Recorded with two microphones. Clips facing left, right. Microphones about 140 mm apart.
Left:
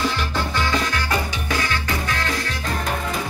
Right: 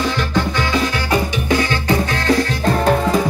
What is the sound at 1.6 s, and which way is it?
Music, 30° right (ahead or behind).